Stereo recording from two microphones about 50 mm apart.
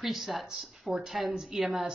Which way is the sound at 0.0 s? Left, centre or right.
Centre.